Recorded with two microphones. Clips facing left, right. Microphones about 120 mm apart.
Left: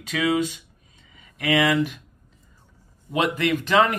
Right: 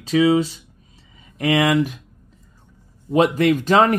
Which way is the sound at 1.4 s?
45° right (ahead or behind).